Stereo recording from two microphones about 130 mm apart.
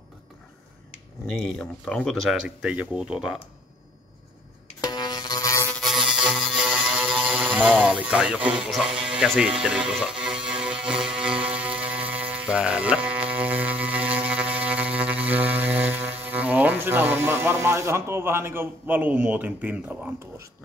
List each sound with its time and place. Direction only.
1.2 s speech: 5° left (ahead or behind)
4.8 s music: 30° left (ahead or behind)
5.8 s music: centre (ahead or behind)
7.2 s speech: 10° right (ahead or behind)
9.6 s music: 5° right (ahead or behind)
16.3 s speech: 10° right (ahead or behind)